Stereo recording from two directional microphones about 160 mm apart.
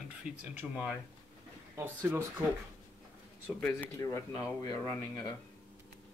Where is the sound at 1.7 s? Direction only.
15° right (ahead or behind).